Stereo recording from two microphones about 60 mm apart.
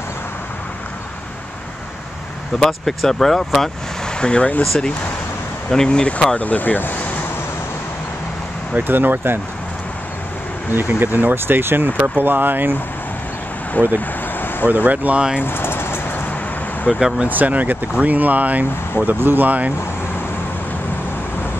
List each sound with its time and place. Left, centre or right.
2.6 s speech: centre
4.2 s speech: centre
5.9 s speech: centre
8.7 s speech: right
10.7 s speech: right
13.8 s speech: left
14.7 s speech: right
15.4 s vehicle: left
16.9 s speech: centre
17.3 s speech: right